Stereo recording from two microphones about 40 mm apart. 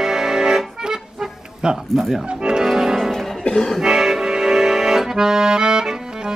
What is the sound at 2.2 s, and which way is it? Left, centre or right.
Speech, right.